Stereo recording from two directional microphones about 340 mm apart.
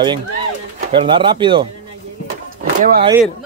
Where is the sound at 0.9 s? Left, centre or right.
Centre.